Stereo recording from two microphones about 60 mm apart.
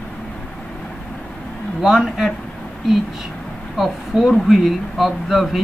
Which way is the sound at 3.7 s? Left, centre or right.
Centre.